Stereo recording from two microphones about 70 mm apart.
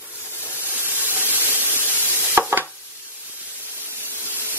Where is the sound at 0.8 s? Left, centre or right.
Right.